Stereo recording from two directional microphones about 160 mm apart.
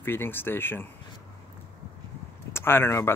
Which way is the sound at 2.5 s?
15° left (ahead or behind).